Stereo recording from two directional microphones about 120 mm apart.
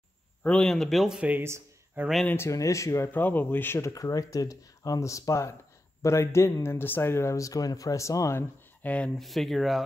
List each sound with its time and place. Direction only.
0.4 s speech: 5° left (ahead or behind); by 2.0 s 20° right (ahead or behind)
2.2 s speech: 20° left (ahead or behind)
9.2 s speech: centre (ahead or behind)